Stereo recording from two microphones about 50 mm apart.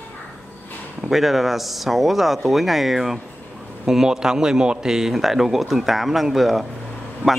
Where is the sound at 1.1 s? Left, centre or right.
Centre.